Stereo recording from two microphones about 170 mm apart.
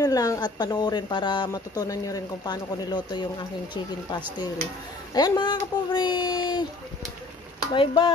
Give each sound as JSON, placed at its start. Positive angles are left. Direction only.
{"t": 0.0, "sound": "a woman's voice", "side_deg": 20}
{"t": 7.7, "sound": "speech", "side_deg": 30}